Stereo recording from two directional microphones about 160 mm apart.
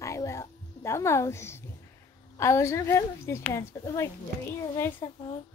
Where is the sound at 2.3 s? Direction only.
20° left (ahead or behind).